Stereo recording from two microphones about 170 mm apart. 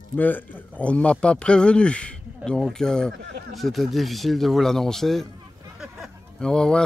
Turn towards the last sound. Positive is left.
turn(degrees=5)  # may be behind; listen again after turning